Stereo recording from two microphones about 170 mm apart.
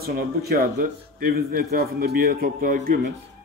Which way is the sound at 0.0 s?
65° right (ahead or behind).